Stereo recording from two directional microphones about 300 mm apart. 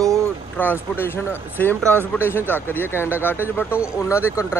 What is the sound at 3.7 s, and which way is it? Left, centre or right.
Speech, centre.